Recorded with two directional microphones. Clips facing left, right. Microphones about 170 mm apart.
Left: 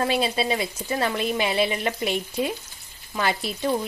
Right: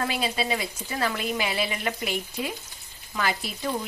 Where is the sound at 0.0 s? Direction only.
25° left (ahead or behind).